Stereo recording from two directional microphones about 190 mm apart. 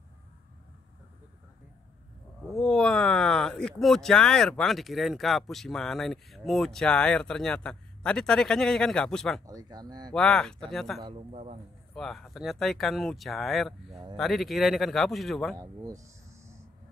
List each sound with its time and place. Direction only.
2.5 s speech: 5° left (ahead or behind)
9.5 s speech: 20° right (ahead or behind)
10.1 s speech: 5° left (ahead or behind)
11.0 s a man's voice: 30° right (ahead or behind)
11.9 s speech: centre (ahead or behind)
15.6 s a sound: 15° right (ahead or behind)